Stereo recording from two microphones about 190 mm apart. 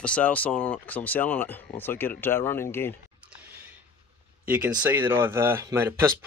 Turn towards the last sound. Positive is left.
turn(degrees=-15)  # may be behind; listen again after turning